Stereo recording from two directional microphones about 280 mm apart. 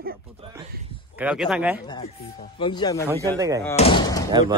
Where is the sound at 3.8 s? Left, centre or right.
Centre.